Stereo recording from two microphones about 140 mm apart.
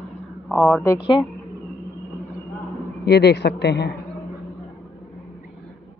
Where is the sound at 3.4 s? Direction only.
90° left.